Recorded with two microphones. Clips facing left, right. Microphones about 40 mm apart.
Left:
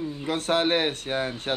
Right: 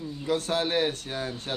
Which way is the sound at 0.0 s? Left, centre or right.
Left.